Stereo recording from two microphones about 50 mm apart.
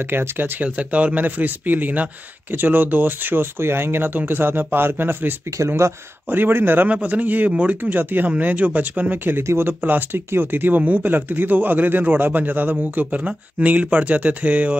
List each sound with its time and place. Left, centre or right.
0.1 s speech: right
0.7 s a man's voice: right
5.8 s speech: right
6.3 s speech: right
6.9 s a man's voice: right
7.9 s a man's voice: right
9.4 s speech: right
9.7 s a man's voice: right
10.8 s a man's voice: right